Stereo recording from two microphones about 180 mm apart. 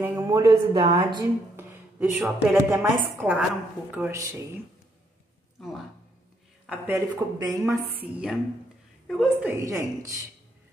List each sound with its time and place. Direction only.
0.0 s a woman's voice: 15° right (ahead or behind)
1.6 s a sound: 10° right (ahead or behind)
2.5 s a woman's voice: 10° right (ahead or behind)
6.9 s a woman's voice: 20° right (ahead or behind)
8.0 s a woman's voice: 5° right (ahead or behind)